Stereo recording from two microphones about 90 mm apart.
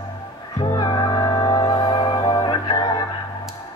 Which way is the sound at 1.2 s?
45° left (ahead or behind).